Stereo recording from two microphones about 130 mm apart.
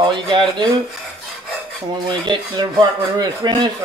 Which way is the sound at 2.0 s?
35° right (ahead or behind).